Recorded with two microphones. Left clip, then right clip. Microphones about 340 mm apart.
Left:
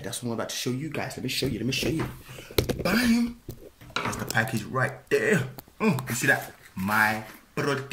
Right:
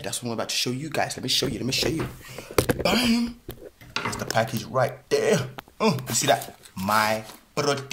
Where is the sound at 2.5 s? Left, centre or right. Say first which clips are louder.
Right 4 dB; right.